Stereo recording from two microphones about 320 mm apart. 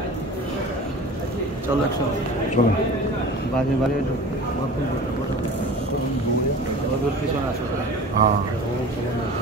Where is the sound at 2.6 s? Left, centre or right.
Left.